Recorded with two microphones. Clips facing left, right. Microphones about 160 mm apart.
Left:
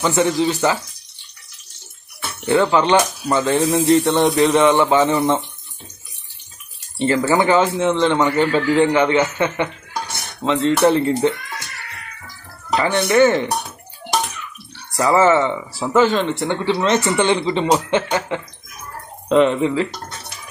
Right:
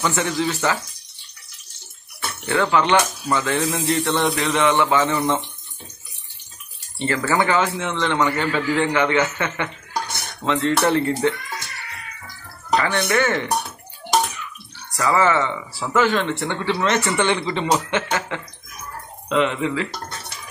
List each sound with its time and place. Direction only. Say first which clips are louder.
0.0 s a man's voice: left 5 dB; 25° left (ahead or behind)
2.7 s a man's voice: left 3 dB; 30° left (ahead or behind)
7.1 s a man's voice: left 4 dB; 20° left (ahead or behind)
12.7 s a man's voice: left 4 dB; 25° left (ahead or behind)
15.0 s a man's voice: left 4 dB; 25° left (ahead or behind)
19.2 s speech: left 6 dB; 40° left (ahead or behind)